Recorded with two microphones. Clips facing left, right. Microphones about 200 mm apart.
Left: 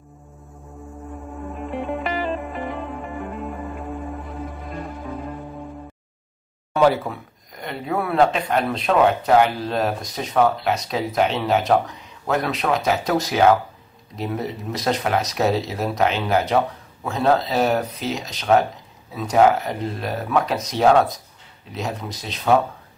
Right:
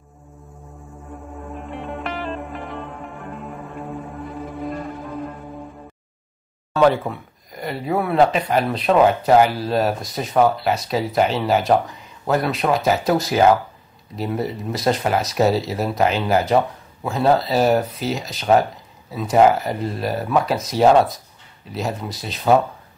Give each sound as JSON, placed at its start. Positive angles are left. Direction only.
{"t": 1.5, "sound": "music", "side_deg": 0}
{"t": 6.7, "sound": "speech", "side_deg": 5}
{"t": 7.6, "sound": "speech", "side_deg": -5}
{"t": 14.1, "sound": "speech", "side_deg": 0}